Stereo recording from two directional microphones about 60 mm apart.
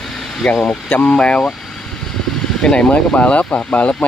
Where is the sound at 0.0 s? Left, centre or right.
Centre.